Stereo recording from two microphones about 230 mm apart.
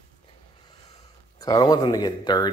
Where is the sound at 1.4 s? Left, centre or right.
Centre.